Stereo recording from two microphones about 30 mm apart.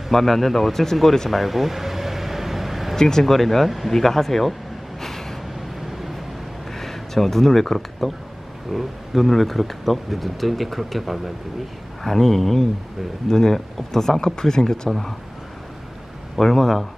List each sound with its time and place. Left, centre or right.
0.1 s speech: centre
1.0 s speech: centre
1.3 s air conditioning: centre
3.0 s speech: centre
3.3 s speech: centre
3.9 s speech: centre
5.0 s a sound: centre
5.9 s vehicle: centre
6.7 s a sound: centre
8.0 s speech: centre
13.3 s speech: centre
16.3 s speech: centre